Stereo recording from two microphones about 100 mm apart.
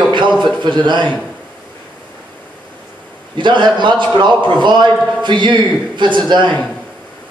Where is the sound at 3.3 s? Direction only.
50° right (ahead or behind).